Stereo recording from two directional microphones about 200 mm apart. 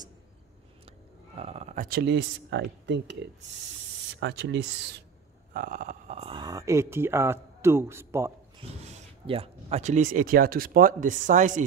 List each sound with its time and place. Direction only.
1.3 s speech: 30° right (ahead or behind); by 4.6 s 60° right (ahead or behind)
5.5 s speech: 45° right (ahead or behind); by 8.3 s 15° right (ahead or behind)
8.8 s speech: 30° right (ahead or behind)